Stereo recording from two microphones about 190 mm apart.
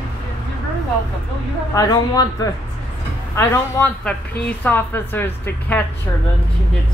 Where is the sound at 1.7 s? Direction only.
20° left (ahead or behind).